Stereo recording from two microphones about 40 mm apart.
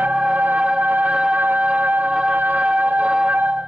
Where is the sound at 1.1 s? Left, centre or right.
Right.